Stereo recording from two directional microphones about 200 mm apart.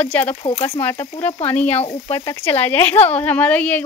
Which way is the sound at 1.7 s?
30° left (ahead or behind).